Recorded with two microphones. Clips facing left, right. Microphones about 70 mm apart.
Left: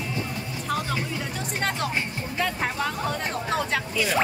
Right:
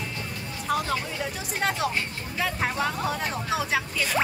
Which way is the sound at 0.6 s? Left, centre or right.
Centre.